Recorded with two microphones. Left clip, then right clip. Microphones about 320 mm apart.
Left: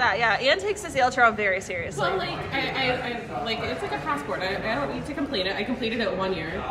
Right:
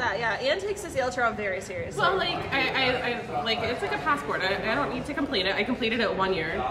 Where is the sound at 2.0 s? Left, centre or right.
Centre.